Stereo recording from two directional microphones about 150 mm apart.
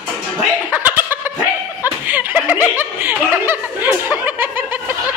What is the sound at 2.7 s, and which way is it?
Speech, 15° right (ahead or behind).